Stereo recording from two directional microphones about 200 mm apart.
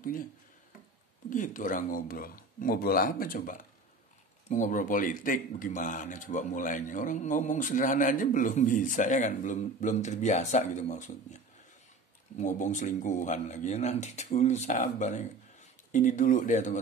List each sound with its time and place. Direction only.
1.3 s speech: 40° left (ahead or behind)